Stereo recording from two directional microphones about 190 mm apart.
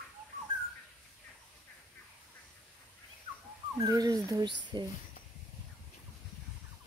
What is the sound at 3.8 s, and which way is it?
Speech, 20° right (ahead or behind).